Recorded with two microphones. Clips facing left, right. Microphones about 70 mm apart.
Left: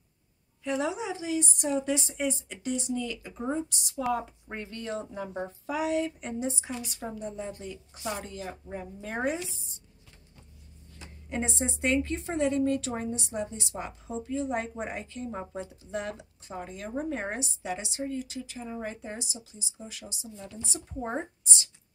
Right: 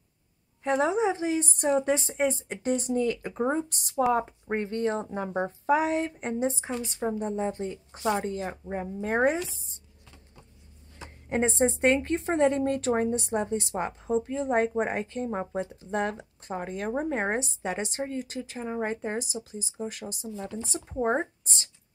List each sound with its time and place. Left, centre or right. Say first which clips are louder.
0.7 s a woman's voice: right 6 dB; right
11.0 s a woman's voice: right 6 dB; right